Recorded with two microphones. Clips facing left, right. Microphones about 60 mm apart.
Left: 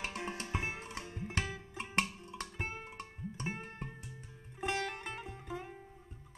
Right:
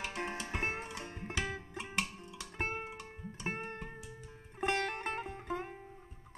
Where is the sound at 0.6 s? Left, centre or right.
Right.